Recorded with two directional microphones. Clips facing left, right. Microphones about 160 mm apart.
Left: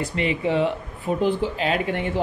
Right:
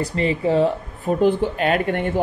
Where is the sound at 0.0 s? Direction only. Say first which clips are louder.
Right 3 dB; 35° right (ahead or behind).